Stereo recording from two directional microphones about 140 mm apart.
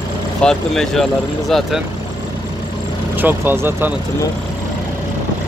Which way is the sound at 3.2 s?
15° right (ahead or behind).